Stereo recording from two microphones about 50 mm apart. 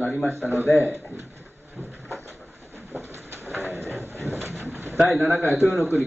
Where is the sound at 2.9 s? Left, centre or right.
Right.